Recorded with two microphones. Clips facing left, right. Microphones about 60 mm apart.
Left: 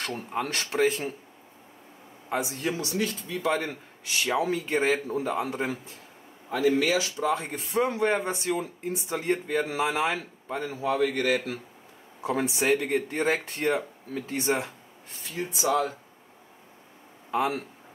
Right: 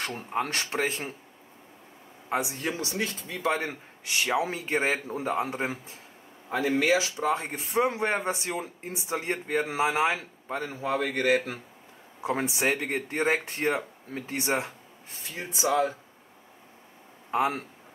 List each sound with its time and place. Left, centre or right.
0.0 s speech: centre
2.2 s speech: centre
2.9 s speech: right
4.2 s speech: centre
10.7 s speech: right; by 14.7 s centre
15.3 s speech: right
17.3 s a man's voice: right